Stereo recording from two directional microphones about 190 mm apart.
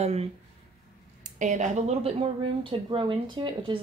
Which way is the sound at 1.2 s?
40° right (ahead or behind).